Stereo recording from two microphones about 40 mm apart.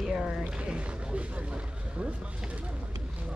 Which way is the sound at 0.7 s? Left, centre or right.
Right.